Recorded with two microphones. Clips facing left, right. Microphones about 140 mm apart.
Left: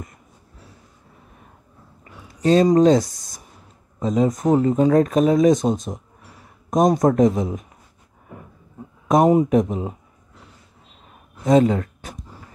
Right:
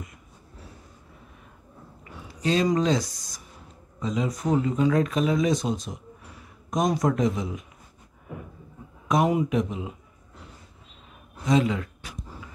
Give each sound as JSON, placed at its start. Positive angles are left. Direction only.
{"t": 2.4, "sound": "speech", "side_deg": 45}
{"t": 4.0, "sound": "speech", "side_deg": 45}
{"t": 9.0, "sound": "speech", "side_deg": 45}
{"t": 11.4, "sound": "a sound", "side_deg": 45}